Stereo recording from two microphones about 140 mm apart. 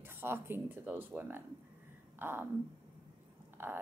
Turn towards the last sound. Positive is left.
turn(degrees=-15)  # may be behind; listen again after turning